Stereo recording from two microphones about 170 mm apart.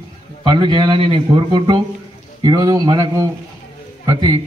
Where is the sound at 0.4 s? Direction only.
25° right (ahead or behind).